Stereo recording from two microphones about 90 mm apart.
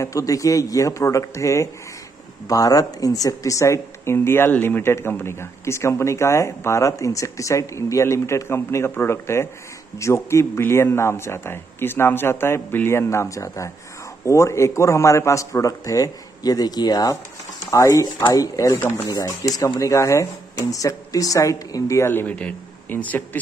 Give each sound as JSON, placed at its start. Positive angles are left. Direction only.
{"t": 0.0, "sound": "a man's voice", "side_deg": 40}
{"t": 18.7, "sound": "a man's voice", "side_deg": 25}
{"t": 19.0, "sound": "a man's voice", "side_deg": 40}